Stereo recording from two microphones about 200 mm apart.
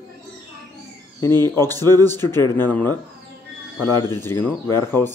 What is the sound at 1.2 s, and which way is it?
Speech, 10° left (ahead or behind).